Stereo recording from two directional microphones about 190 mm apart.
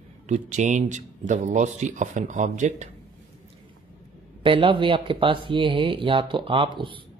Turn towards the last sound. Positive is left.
turn(degrees=-25)  # may be behind; listen again after turning